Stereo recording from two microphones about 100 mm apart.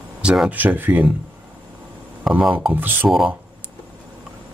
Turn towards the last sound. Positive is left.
turn(degrees=-5)  # may be behind; listen again after turning